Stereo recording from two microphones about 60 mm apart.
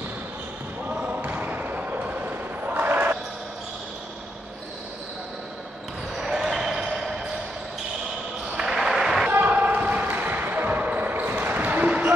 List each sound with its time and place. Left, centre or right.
0.8 s basketball bounce: right
6.1 s basketball bounce: centre
8.5 s basketball bounce: centre
9.3 s basketball bounce: right